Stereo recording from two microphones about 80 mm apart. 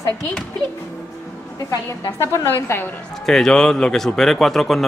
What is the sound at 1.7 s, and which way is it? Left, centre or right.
A woman's voice, left.